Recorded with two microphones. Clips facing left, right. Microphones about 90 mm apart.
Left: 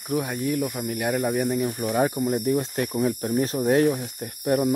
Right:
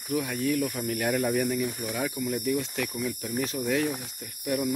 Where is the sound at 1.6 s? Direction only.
40° left (ahead or behind).